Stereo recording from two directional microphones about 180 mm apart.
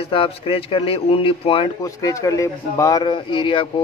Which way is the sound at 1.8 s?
20° left (ahead or behind).